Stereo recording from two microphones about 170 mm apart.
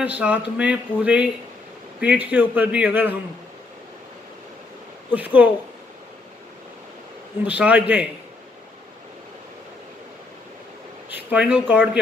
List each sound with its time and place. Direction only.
0.0 s speech: 10° right (ahead or behind)
5.1 s speech: 10° right (ahead or behind)
7.4 s speech: 10° right (ahead or behind)
11.1 s speech: 10° right (ahead or behind)